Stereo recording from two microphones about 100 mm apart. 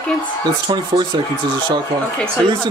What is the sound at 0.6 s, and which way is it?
Speech, 45° right (ahead or behind).